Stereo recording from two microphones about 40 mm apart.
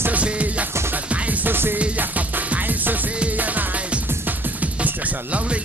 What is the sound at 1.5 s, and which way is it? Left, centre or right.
Music, right.